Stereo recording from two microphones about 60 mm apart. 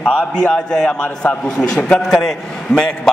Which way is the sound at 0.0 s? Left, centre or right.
Left.